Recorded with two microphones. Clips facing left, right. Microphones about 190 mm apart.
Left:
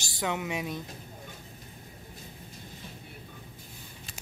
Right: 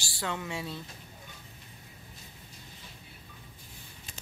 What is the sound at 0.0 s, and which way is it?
Speech, 20° left (ahead or behind).